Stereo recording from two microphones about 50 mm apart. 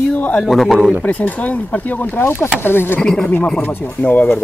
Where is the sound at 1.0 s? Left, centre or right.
Left.